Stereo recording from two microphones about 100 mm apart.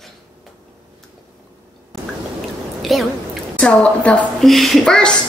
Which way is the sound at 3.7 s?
10° left (ahead or behind).